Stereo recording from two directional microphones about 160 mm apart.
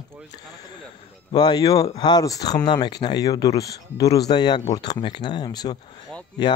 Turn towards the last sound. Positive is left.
turn(degrees=25)  # may be behind; listen again after turning